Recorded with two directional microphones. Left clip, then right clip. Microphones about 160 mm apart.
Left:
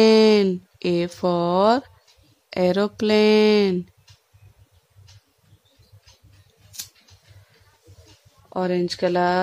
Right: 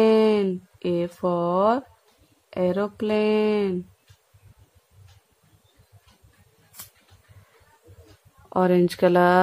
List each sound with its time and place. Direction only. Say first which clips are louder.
0.0 s speech: left 4 dB; 25° left (ahead or behind)
8.5 s speech: right 3 dB; 10° right (ahead or behind)